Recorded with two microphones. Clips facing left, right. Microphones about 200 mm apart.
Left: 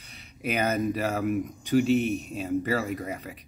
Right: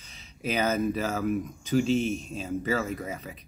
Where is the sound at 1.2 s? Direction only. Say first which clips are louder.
Left 1 dB; 5° left (ahead or behind).